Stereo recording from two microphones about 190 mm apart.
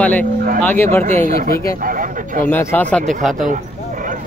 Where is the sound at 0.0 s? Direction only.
10° left (ahead or behind).